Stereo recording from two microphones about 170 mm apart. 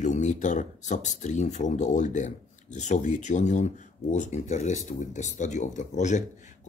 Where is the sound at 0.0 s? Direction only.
45° left (ahead or behind).